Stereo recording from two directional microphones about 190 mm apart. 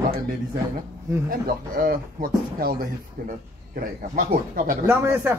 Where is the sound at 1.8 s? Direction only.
50° right (ahead or behind).